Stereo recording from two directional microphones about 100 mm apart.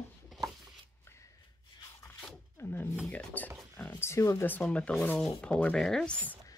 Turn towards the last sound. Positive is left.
turn(degrees=15)  # may be behind; listen again after turning